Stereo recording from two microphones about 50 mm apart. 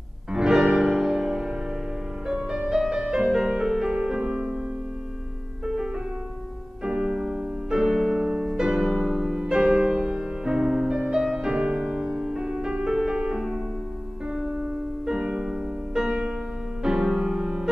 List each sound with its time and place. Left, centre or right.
0.3 s music: centre
6.8 s music: centre
14.2 s music: right